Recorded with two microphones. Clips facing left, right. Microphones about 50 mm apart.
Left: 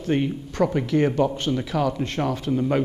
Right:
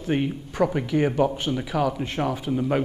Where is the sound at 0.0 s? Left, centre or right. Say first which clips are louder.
Left 2 dB; centre.